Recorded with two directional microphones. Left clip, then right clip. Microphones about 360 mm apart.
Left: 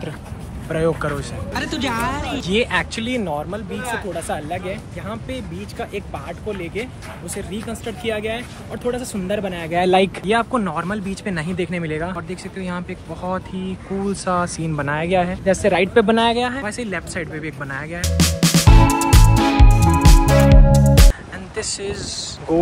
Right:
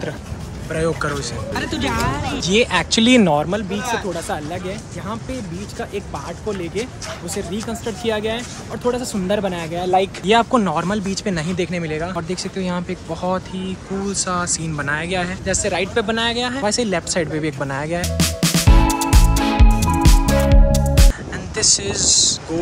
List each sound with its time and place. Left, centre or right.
0.7 s speech: centre
3.0 s speech: right
3.7 s speech: centre
6.5 s speech: centre
9.8 s speech: left
10.2 s speech: centre
16.6 s speech: centre
19.9 s music: centre
21.5 s speech: centre